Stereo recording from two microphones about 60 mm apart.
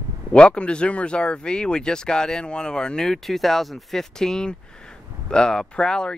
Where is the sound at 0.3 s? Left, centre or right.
Centre.